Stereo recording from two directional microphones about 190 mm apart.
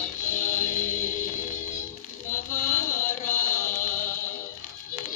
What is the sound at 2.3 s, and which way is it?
Music, 40° left (ahead or behind).